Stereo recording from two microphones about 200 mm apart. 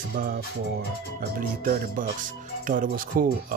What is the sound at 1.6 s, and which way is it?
Speech, 45° right (ahead or behind).